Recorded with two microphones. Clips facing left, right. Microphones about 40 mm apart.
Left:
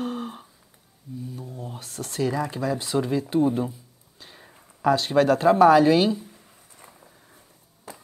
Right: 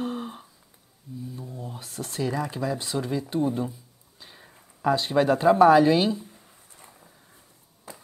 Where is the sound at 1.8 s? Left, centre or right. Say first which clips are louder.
Even; right.